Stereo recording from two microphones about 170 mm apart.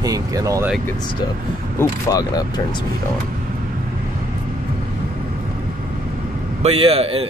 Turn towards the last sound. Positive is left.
turn(degrees=-35)  # may be behind; listen again after turning